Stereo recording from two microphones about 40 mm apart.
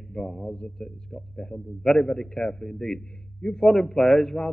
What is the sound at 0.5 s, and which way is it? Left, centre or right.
Speech, left.